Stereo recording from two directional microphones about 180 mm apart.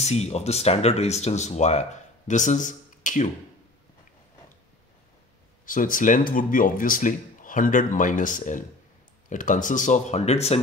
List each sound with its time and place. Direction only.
0.0 s speech: 35° left (ahead or behind)
5.7 s speech: 50° left (ahead or behind)